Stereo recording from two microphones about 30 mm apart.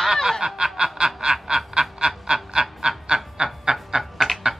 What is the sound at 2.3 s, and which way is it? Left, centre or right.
Honk, centre.